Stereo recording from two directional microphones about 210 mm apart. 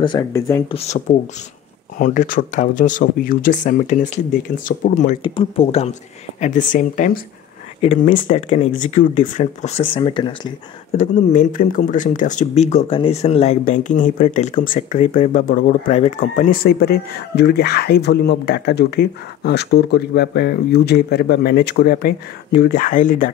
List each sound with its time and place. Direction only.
0.0 s speech: 15° left (ahead or behind)
0.7 s speech: 30° left (ahead or behind)
2.0 s speech: 40° left (ahead or behind)
4.7 s speech: 50° left (ahead or behind)
5.2 s speech: 25° left (ahead or behind)
11.0 s speech: 35° left (ahead or behind)